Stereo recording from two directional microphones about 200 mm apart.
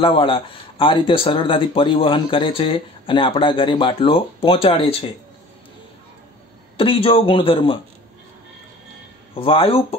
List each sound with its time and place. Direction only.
0.0 s speech: 25° left (ahead or behind)
6.8 s speech: 25° left (ahead or behind)
9.3 s speech: 25° left (ahead or behind)